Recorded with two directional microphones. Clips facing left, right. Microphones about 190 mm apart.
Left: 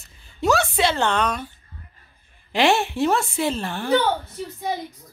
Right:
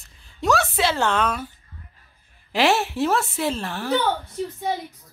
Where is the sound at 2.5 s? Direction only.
5° right (ahead or behind).